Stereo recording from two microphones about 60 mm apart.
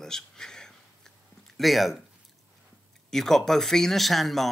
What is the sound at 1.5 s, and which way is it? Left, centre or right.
Speech, centre.